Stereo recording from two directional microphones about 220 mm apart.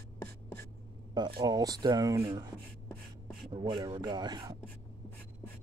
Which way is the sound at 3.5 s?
20° right (ahead or behind).